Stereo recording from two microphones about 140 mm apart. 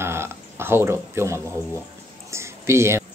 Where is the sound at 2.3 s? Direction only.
20° right (ahead or behind).